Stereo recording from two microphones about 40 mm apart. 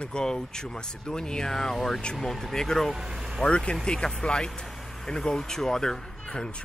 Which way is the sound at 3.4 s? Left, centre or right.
Left.